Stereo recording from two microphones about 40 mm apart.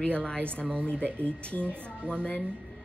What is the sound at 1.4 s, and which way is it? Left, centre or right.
Speech, left.